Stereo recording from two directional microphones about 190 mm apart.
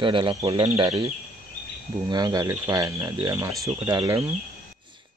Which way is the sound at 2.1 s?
20° right (ahead or behind).